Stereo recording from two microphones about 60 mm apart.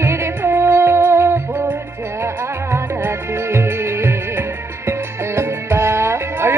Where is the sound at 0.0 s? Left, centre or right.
Right.